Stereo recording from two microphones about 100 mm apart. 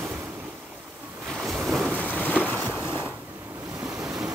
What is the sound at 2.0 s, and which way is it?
Boat, 15° left (ahead or behind).